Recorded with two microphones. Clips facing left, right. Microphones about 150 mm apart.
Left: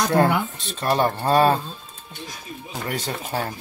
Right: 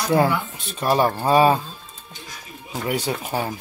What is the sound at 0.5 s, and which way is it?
Speech, 10° right (ahead or behind).